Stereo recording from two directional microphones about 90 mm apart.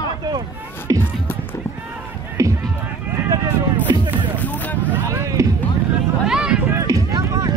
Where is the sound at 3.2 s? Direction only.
40° right (ahead or behind).